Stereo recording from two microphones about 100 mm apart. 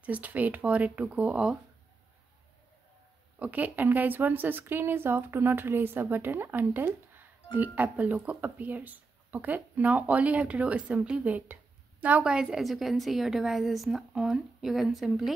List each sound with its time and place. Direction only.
0.0 s speech: 15° right (ahead or behind)
3.3 s a woman's voice: 15° right (ahead or behind)